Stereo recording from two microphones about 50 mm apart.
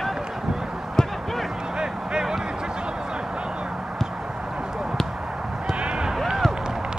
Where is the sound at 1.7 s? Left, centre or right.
Centre.